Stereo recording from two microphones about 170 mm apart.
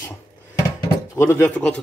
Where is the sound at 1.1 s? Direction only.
15° left (ahead or behind).